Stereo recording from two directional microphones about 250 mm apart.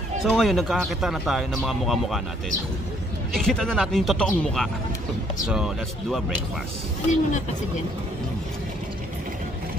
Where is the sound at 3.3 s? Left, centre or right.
Centre.